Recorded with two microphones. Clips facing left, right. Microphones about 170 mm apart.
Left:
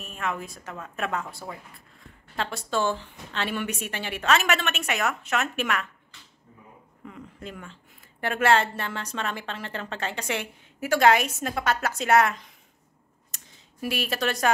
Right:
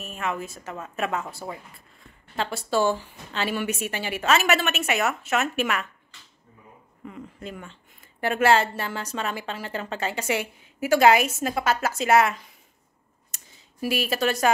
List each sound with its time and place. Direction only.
0.0 s a woman's voice: centre (ahead or behind)
1.4 s speech: 15° right (ahead or behind)
2.3 s a woman's voice: 5° right (ahead or behind)
7.1 s a woman's voice: 5° right (ahead or behind)
13.3 s clicking: 5° right (ahead or behind)